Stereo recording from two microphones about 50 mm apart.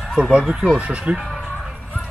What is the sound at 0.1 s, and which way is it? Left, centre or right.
Speech, centre.